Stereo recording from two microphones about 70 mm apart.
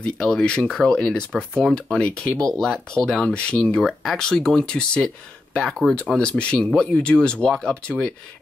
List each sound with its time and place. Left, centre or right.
0.0 s speech: centre